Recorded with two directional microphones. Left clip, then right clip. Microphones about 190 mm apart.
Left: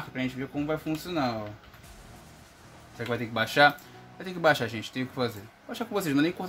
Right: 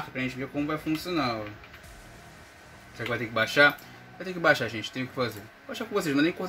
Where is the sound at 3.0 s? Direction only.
60° left (ahead or behind).